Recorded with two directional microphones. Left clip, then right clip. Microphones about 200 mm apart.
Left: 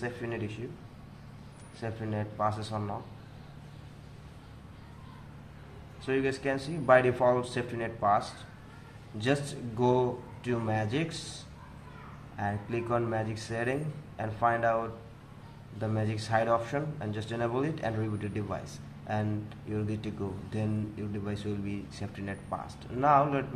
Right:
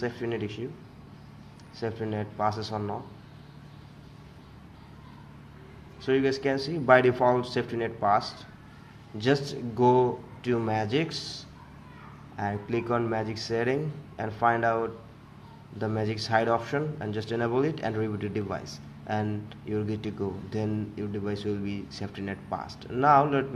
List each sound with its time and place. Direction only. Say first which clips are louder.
0.0 s speech: right 5 dB; 25° right (ahead or behind)
1.8 s speech: right 5 dB; 25° right (ahead or behind)
6.0 s speech: right 5 dB; 25° right (ahead or behind)
12.4 s speech: right 3 dB; 25° right (ahead or behind)